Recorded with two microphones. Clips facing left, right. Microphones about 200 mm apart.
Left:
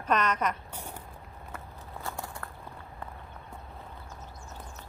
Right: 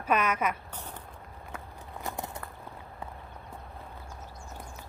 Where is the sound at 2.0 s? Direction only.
20° right (ahead or behind).